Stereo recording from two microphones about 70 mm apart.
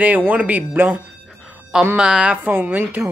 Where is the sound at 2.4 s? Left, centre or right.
Right.